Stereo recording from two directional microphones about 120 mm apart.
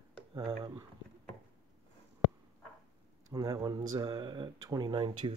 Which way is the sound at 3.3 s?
35° right (ahead or behind).